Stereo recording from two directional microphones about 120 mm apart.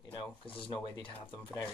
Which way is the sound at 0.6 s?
45° left (ahead or behind).